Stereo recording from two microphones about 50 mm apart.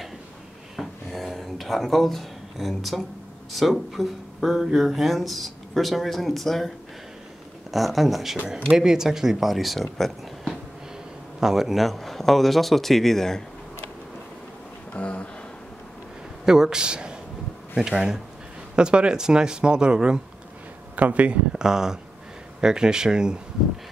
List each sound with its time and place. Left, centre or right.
0.7 s a sound: centre
3.5 s a man's voice: centre
7.7 s a man's voice: centre
11.3 s a man's voice: centre
14.9 s a sound: left
16.4 s speech: centre; by 21.4 s right
21.5 s speech: centre